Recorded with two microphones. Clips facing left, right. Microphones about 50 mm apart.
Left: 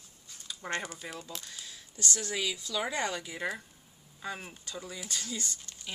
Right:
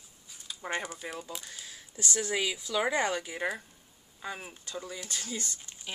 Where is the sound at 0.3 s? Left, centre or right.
Centre.